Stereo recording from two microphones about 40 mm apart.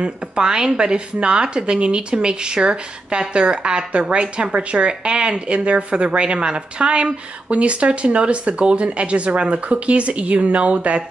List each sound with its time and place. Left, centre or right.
0.0 s speech: centre